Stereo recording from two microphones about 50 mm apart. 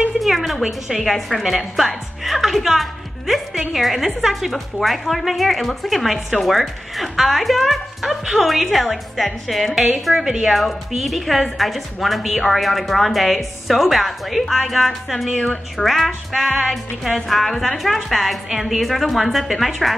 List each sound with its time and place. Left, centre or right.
0.2 s a woman's voice: centre
10.1 s speech: centre
10.5 s a woman's voice: centre
15.3 s a woman's voice: left
15.8 s a woman's voice: centre